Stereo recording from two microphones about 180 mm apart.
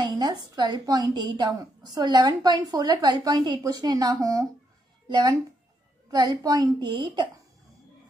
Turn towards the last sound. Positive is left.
turn(degrees=-25)  # may be behind; listen again after turning